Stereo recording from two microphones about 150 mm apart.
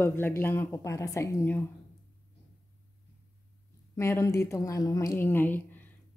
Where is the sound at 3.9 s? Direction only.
15° left (ahead or behind).